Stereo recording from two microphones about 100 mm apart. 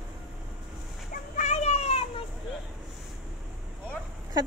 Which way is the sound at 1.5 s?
90° left.